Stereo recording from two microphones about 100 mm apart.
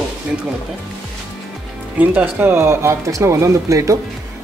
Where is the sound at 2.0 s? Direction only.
15° right (ahead or behind); by 3.9 s 30° right (ahead or behind).